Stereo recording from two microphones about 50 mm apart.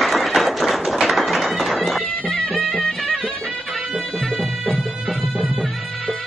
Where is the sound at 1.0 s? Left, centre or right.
Centre.